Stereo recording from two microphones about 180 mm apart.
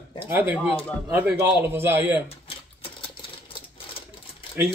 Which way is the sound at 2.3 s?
30° left (ahead or behind).